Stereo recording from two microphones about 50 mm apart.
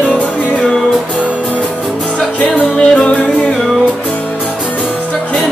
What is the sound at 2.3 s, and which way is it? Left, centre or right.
Music, left.